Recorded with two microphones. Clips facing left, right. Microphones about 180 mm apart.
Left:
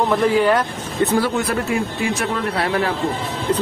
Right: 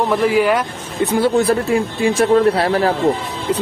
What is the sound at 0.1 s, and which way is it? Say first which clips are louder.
Speech: right 1 dB; 10° right (ahead or behind).